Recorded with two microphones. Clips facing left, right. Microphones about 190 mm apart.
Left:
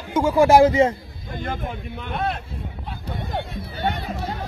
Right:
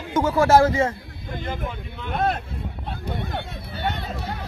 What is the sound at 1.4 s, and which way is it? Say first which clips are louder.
Speech: left 2 dB; 50° left (ahead or behind).